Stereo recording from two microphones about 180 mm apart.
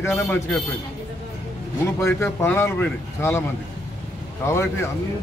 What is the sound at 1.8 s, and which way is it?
Speech, 15° left (ahead or behind).